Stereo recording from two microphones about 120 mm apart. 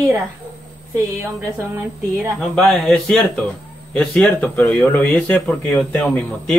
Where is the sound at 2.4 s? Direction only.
5° left (ahead or behind).